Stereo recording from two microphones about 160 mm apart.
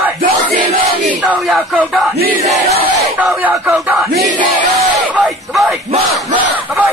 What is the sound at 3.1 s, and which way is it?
Speech, 10° right (ahead or behind).